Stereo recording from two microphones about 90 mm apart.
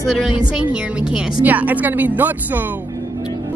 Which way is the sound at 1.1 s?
15° right (ahead or behind).